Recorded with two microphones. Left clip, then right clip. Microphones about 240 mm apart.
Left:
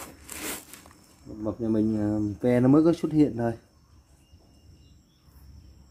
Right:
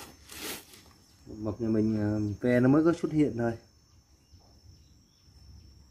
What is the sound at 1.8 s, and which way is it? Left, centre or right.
Speech, centre.